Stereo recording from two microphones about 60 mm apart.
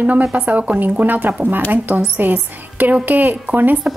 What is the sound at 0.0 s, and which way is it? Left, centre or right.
A woman's voice, right.